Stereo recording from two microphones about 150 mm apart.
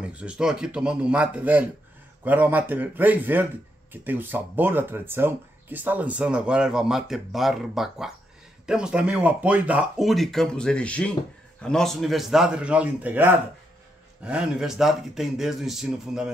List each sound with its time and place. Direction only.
0.0 s speech: 5° right (ahead or behind)